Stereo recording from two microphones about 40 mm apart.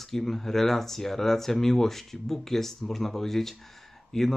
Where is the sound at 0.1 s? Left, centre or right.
Centre.